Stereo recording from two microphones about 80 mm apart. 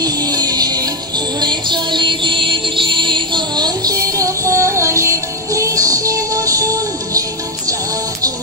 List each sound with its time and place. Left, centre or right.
0.0 s music: right
1.4 s music: right
4.2 s music: right